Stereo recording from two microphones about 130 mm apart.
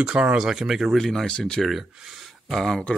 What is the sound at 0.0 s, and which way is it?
Speech, 5° right (ahead or behind).